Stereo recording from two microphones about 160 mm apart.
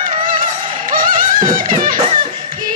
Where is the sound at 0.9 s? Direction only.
60° right (ahead or behind).